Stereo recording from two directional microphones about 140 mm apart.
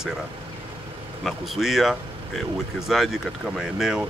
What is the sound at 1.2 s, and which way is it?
Speech, centre (ahead or behind).